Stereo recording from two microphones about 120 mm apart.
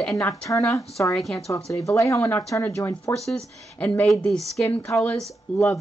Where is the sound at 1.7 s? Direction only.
25° left (ahead or behind).